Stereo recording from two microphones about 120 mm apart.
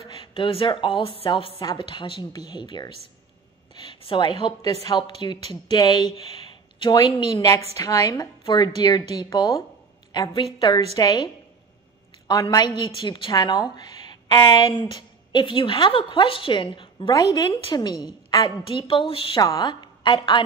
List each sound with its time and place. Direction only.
0.0 s a woman's voice: 45° left (ahead or behind)
1.6 s a woman's voice: 40° left (ahead or behind)
12.3 s a woman's voice: 35° left (ahead or behind)
17.1 s a woman's voice: 30° left (ahead or behind)
18.7 s a woman's voice: 45° left (ahead or behind)
19.3 s a woman's voice: 35° left (ahead or behind)